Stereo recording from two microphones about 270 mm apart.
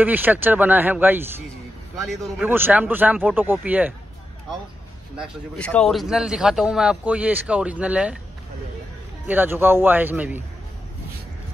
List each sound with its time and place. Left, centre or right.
0.0 s speech: centre
2.3 s speech: centre
5.1 s speech: centre
9.3 s speech: centre